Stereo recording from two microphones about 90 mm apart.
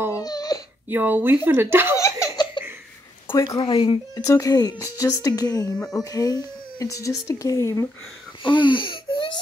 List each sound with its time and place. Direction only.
0.1 s a sound: 45° left (ahead or behind)
0.8 s speech: 20° right (ahead or behind)
2.0 s laughter: 35° left (ahead or behind)
2.6 s a sound: 60° left (ahead or behind)
3.5 s speech: 85° left
4.2 s speech: 40° left (ahead or behind)
5.8 s speech: 5° left (ahead or behind)
6.1 s speech: 40° left (ahead or behind)
8.5 s wheeze: 65° left (ahead or behind)